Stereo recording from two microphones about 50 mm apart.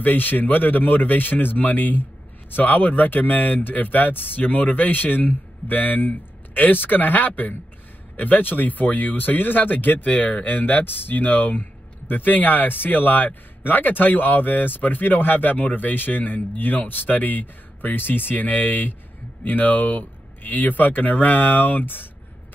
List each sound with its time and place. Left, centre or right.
0.0 s speech: left